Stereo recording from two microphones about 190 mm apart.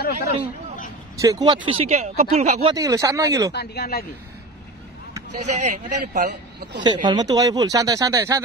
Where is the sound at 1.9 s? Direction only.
35° right (ahead or behind).